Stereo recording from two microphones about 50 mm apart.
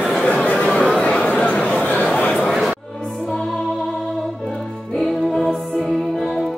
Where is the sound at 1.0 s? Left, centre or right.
Left.